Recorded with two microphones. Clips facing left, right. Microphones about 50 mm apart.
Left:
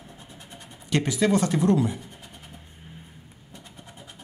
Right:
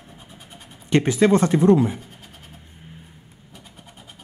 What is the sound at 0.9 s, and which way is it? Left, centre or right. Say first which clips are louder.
Speech: right 6 dB; right.